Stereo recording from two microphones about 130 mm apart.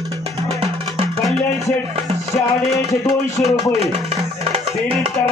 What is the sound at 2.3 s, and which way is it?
Music, 25° left (ahead or behind).